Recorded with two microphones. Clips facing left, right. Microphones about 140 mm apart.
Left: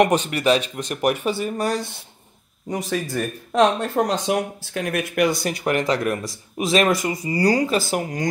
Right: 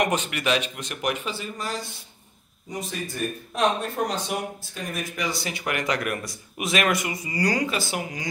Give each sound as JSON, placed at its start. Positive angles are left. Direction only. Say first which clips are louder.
{"t": 0.0, "sound": "speech", "louder": "left 7 dB", "side_deg": 35}
{"t": 1.2, "sound": "speech", "louder": "left 9 dB", "side_deg": 55}
{"t": 2.7, "sound": "speech", "louder": "left 8 dB", "side_deg": 90}